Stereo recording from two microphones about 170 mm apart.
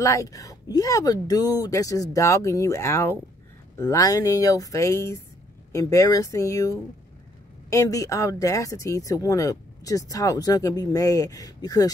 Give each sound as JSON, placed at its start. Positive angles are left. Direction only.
{"t": 0.0, "sound": "speech", "side_deg": 20}